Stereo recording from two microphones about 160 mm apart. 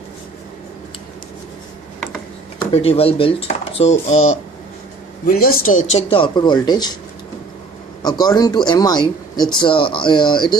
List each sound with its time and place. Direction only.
2.7 s speech: 35° left (ahead or behind)
5.2 s speech: 70° left (ahead or behind); by 7.0 s 25° left (ahead or behind)
8.0 s speech: 25° left (ahead or behind)